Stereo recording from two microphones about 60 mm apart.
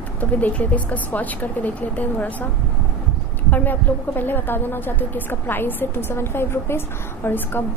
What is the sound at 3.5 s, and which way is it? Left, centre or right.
A woman's voice, left.